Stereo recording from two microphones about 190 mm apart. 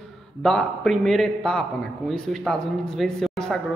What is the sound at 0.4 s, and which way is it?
A man's voice, 5° left (ahead or behind).